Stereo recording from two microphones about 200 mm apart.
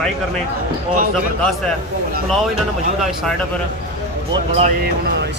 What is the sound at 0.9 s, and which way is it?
Speech, 40° right (ahead or behind).